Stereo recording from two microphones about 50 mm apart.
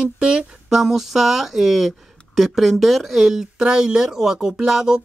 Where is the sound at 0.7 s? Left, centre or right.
Centre.